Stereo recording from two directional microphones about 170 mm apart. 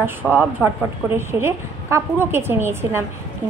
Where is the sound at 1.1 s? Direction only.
15° right (ahead or behind).